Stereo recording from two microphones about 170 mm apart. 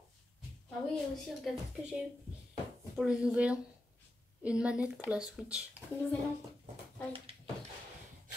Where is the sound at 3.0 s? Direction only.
5° right (ahead or behind).